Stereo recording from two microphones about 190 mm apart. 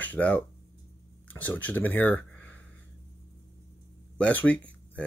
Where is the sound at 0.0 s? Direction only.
10° left (ahead or behind).